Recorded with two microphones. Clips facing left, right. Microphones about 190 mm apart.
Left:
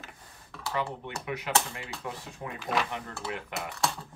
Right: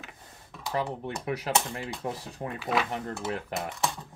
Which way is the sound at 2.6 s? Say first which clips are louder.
Right 2 dB; centre (ahead or behind).